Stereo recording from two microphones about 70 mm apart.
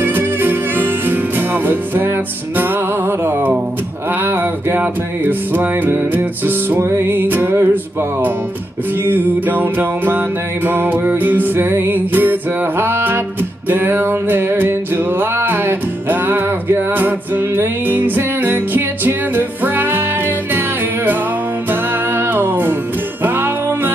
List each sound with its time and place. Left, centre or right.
0.0 s music: right
3.1 s music: right